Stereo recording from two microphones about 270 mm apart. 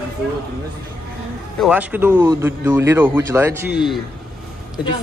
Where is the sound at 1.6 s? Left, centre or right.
Centre.